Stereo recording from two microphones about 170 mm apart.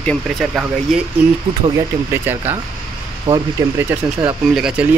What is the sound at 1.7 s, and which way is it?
Speech, 15° right (ahead or behind).